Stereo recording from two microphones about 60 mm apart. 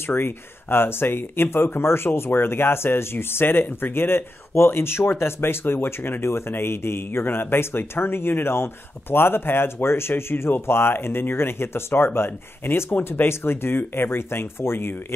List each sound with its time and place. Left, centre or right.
0.0 s speech: left